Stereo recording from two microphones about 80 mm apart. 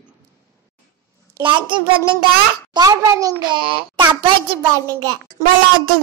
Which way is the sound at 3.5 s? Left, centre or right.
Right.